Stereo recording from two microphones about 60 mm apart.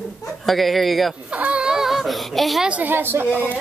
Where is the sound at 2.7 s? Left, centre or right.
Right.